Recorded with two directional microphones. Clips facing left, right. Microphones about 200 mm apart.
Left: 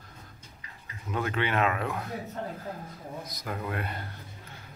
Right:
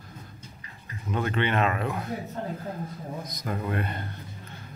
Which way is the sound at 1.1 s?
5° left (ahead or behind).